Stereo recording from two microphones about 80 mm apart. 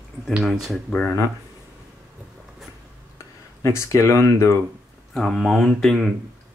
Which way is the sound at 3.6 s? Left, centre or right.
Left.